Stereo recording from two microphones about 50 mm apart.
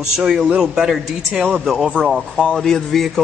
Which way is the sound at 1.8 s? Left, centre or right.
Centre.